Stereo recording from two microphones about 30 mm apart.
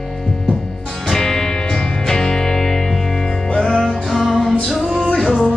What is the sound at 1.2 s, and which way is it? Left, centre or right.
Music, centre.